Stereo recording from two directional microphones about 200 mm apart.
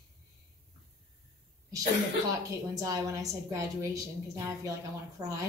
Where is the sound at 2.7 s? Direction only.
15° right (ahead or behind).